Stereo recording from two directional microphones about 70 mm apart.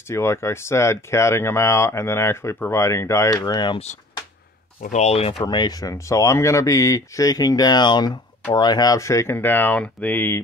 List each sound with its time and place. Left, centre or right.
0.1 s speech: left
3.3 s speech: left
5.5 s speech: left
8.9 s speech: left